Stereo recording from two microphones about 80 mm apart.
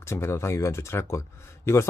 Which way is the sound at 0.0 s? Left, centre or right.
Left.